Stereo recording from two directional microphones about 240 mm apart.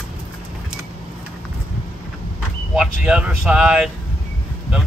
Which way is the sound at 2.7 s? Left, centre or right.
Centre.